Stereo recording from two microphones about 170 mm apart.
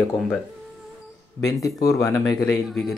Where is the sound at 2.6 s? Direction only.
Centre (ahead or behind).